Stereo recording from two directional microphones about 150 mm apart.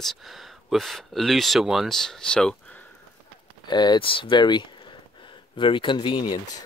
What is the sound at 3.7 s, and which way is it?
Speech, 30° left (ahead or behind).